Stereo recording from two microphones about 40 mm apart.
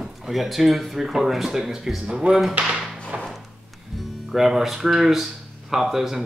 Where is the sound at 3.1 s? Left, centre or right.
Right.